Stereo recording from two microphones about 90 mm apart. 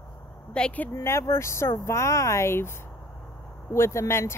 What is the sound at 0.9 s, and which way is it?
Speech, 30° left (ahead or behind).